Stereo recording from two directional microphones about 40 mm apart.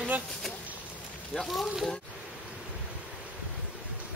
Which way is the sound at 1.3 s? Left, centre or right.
Centre.